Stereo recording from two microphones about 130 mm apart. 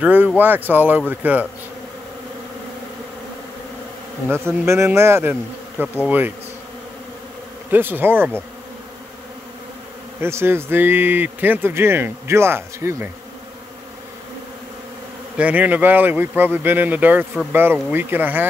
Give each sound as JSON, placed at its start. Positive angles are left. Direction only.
{"t": 0.0, "sound": "speech", "side_deg": -15}
{"t": 4.3, "sound": "speech", "side_deg": -20}
{"t": 7.7, "sound": "speech", "side_deg": -15}
{"t": 10.2, "sound": "speech", "side_deg": -20}
{"t": 15.3, "sound": "speech", "side_deg": -10}